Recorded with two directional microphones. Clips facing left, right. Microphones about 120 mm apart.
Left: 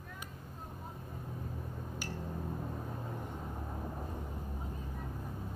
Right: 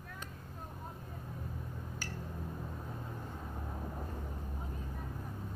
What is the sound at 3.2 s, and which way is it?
Vehicle, 15° left (ahead or behind).